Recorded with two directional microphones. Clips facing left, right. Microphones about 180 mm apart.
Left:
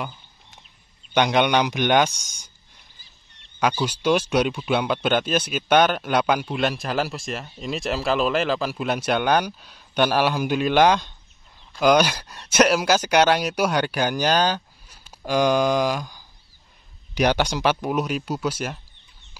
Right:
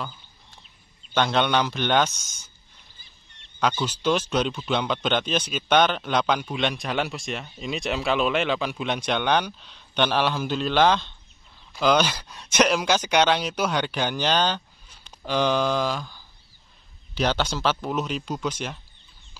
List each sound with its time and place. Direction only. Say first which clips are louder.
1.1 s speech: left 3 dB; 15° left (ahead or behind)
3.8 s speech: left 3 dB; 10° left (ahead or behind)